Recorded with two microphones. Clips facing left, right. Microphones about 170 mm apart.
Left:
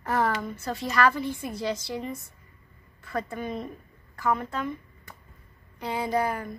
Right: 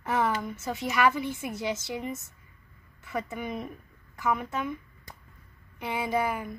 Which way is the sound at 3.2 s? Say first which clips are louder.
Left 2 dB; 10° right (ahead or behind).